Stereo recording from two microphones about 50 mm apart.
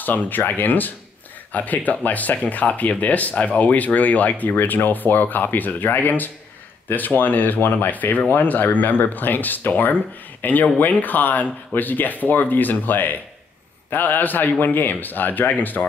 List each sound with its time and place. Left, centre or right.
0.0 s speech: left